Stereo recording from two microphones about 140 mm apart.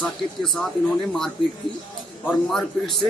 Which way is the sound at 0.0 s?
5° left (ahead or behind).